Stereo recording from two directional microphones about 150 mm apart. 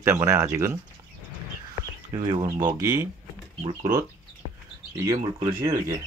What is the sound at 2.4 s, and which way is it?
Speech, 30° right (ahead or behind).